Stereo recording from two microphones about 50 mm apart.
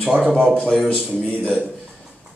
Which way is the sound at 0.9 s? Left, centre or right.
Centre.